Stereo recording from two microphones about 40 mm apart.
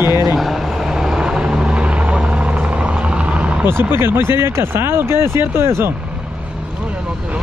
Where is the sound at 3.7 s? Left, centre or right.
Right.